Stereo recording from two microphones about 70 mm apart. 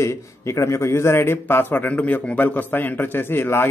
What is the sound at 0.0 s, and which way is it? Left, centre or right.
A man's voice, left.